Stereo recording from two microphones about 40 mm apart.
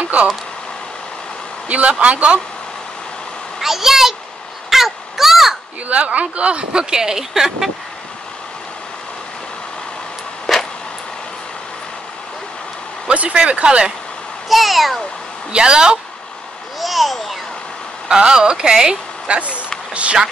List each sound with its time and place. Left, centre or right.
1.7 s speech: right
3.6 s a child's voice: centre
4.6 s crow: centre
5.9 s speech: right; by 7.7 s centre
10.4 s a sound: centre
13.1 s speech: right
14.5 s a child's voice: centre
15.5 s speech: right
16.8 s babbling: centre
18.0 s speech: right
19.2 s speech: right